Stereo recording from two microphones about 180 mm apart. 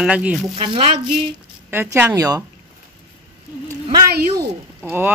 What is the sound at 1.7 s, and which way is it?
Speech, 10° right (ahead or behind).